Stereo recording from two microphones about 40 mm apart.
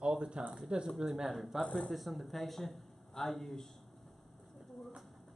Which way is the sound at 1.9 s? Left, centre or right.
Centre.